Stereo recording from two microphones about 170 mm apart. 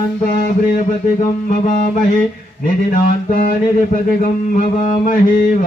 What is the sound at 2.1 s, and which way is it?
Mantra, 55° left (ahead or behind).